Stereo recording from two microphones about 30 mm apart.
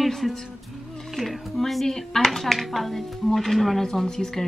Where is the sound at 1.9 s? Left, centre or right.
Centre.